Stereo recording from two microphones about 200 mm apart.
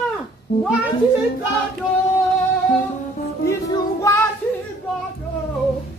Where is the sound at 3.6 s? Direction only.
15° left (ahead or behind).